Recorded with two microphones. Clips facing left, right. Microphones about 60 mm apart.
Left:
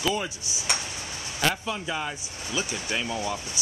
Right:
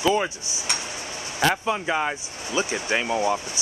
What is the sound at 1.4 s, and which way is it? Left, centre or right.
Speech, right.